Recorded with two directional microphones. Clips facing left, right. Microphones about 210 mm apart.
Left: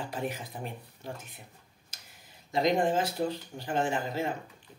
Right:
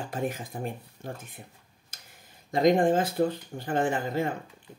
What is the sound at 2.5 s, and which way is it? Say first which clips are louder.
Speech: right 5 dB; 50° right (ahead or behind).